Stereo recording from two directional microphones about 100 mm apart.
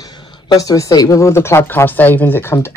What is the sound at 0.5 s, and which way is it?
Speech, 35° left (ahead or behind).